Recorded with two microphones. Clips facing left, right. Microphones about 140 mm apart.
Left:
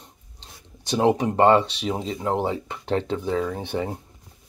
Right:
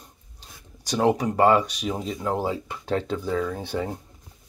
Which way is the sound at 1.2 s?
25° left (ahead or behind).